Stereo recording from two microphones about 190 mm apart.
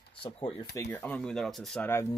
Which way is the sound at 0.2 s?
30° left (ahead or behind).